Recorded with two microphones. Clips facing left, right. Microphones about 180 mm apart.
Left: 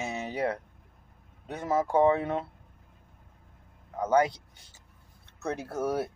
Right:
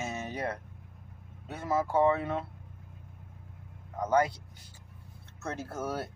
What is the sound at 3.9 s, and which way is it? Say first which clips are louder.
Speech: left 2 dB; 10° left (ahead or behind).